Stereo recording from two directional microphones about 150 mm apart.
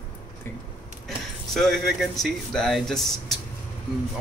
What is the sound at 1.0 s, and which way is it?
Speech, centre (ahead or behind).